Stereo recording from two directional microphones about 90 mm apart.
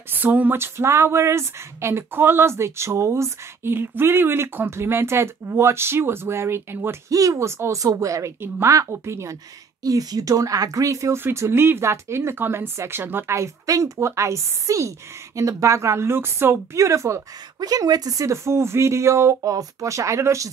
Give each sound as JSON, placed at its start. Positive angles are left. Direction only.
{"t": 0.1, "sound": "speech", "side_deg": -20}
{"t": 7.1, "sound": "speech", "side_deg": -40}
{"t": 17.6, "sound": "speech", "side_deg": -45}